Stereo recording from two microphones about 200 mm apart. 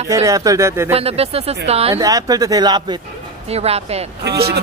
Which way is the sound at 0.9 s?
30° right (ahead or behind).